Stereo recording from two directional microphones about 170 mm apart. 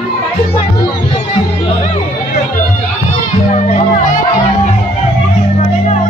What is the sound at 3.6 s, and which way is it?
Music, 45° left (ahead or behind).